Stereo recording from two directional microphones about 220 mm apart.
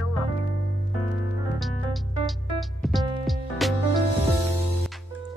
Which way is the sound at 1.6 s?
Centre (ahead or behind).